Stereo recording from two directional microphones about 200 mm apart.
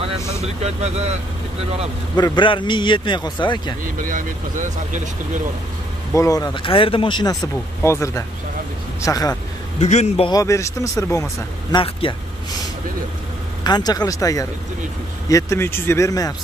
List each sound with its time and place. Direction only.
0.4 s speech: 30° right (ahead or behind)
2.1 s a man's voice: 20° left (ahead or behind)
3.8 s speech: 40° right (ahead or behind)
6.1 s a man's voice: 15° left (ahead or behind)
9.8 s a man's voice: 35° left (ahead or behind)
10.3 s speech: 15° left (ahead or behind)
11.8 s a man's voice: 25° left (ahead or behind)
13.7 s speech: 20° left (ahead or behind)